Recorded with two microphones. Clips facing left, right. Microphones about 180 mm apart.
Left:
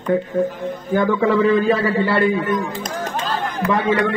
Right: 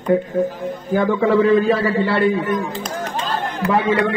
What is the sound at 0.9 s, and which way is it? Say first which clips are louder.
A man's voice: right 1 dB; centre (ahead or behind).